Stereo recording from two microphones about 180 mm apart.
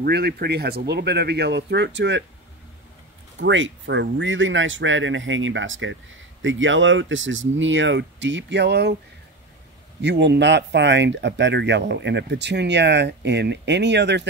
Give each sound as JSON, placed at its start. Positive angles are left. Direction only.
{"t": 0.0, "sound": "speech", "side_deg": -60}
{"t": 2.0, "sound": "speech", "side_deg": -85}
{"t": 3.3, "sound": "speech", "side_deg": -90}
{"t": 10.0, "sound": "speech", "side_deg": -75}